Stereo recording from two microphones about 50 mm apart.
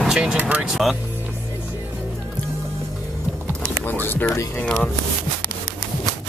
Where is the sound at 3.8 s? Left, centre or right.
Left.